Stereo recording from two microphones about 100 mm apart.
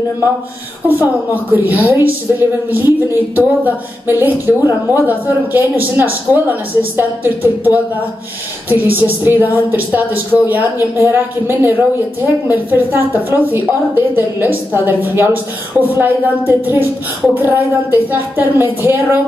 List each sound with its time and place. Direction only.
0.8 s a woman's voice: 15° right (ahead or behind)